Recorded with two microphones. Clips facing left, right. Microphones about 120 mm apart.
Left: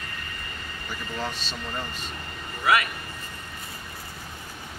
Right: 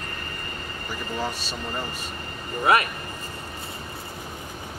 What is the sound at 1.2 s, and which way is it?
Speech, 10° right (ahead or behind).